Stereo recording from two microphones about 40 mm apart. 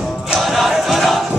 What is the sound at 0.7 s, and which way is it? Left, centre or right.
Music, centre.